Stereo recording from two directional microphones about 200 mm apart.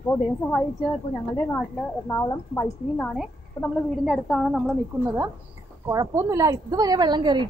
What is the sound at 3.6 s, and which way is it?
Speech, 25° left (ahead or behind).